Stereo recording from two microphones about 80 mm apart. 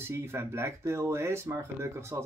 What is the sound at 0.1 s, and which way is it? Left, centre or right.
Speech, right.